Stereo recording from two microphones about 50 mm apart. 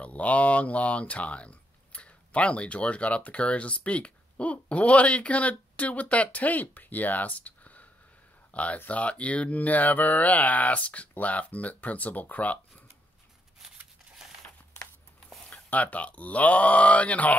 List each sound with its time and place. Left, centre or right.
0.0 s speech: left
15.5 s speech: left